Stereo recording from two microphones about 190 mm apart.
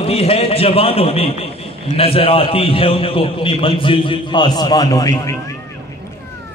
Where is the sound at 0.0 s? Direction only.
30° left (ahead or behind).